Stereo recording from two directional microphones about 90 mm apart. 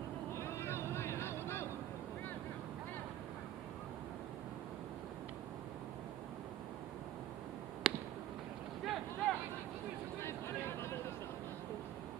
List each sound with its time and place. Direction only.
0.4 s vehicle: 30° left (ahead or behind)
7.8 s a sound: 5° right (ahead or behind)
10.2 s vehicle: 30° left (ahead or behind)